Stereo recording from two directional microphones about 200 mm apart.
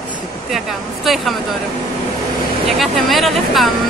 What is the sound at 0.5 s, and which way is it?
Speech, centre (ahead or behind).